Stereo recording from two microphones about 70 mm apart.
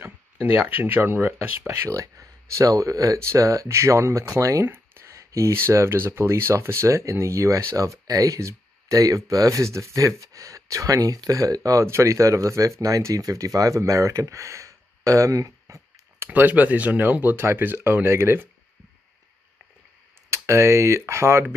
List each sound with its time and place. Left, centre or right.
0.0 s speech: right
1.7 s speech: right
4.6 s a sound: right
5.1 s speech: right
11.8 s speech: right
16.3 s speech: right
20.2 s speech: right